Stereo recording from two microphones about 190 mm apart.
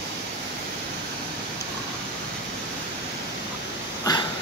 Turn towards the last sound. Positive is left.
turn(degrees=20)  # may be behind; listen again after turning